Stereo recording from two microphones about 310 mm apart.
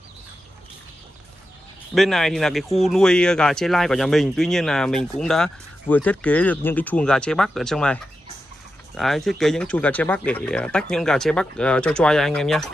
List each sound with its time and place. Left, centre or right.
2.0 s speech: centre